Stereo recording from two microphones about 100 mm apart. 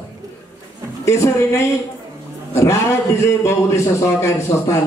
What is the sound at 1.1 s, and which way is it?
Speech, 30° left (ahead or behind).